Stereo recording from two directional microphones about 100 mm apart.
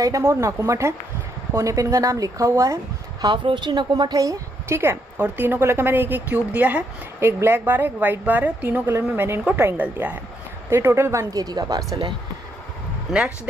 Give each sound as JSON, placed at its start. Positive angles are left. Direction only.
{"t": 0.0, "sound": "speech", "side_deg": -30}
{"t": 3.4, "sound": "speech", "side_deg": -50}
{"t": 5.1, "sound": "speech", "side_deg": -15}